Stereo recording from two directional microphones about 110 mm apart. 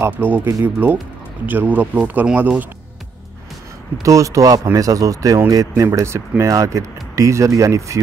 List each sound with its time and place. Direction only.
0.0 s speech: 15° right (ahead or behind)
4.0 s a man's voice: 30° right (ahead or behind)